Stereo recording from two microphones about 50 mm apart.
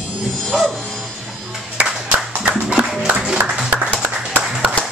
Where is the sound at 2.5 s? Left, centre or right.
Right.